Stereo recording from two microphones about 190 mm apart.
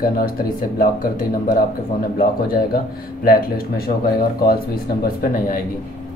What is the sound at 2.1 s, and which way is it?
Speech, 50° left (ahead or behind).